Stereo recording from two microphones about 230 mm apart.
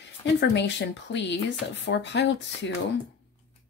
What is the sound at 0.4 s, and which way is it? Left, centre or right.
Speech, left.